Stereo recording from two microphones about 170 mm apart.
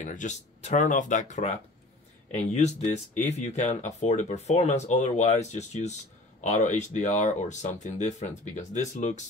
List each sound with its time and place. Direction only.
0.0 s speech: 45° left (ahead or behind)